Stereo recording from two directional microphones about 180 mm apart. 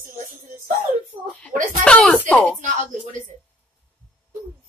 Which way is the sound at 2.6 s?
45° right (ahead or behind).